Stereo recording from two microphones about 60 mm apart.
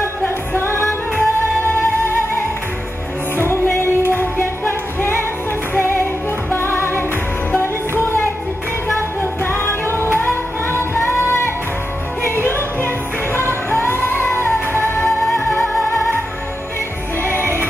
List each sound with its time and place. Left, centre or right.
0.6 s music: left
3.3 s music: left
9.4 s music: left
10.8 s music: left
15.0 s music: centre
17.2 s music: left